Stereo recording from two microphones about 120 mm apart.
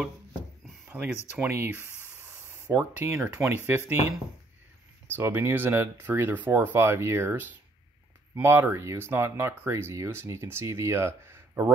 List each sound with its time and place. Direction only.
0.8 s a sound: 15° right (ahead or behind)
1.4 s speech: 20° right (ahead or behind)
5.1 s speech: 20° right (ahead or behind)